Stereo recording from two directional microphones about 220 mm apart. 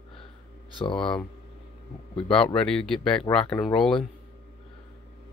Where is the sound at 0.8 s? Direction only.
20° left (ahead or behind).